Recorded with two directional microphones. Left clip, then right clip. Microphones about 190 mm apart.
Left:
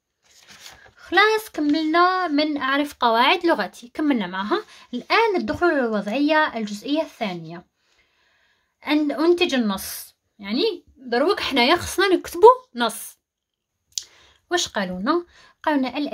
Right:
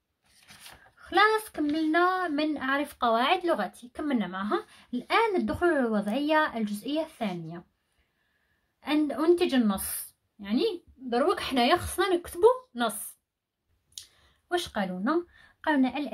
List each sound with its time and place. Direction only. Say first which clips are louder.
0.9 s speech: left 5 dB; 30° left (ahead or behind)
8.7 s a woman's voice: left 6 dB; 30° left (ahead or behind)
14.5 s a woman's voice: left 6 dB; 40° left (ahead or behind)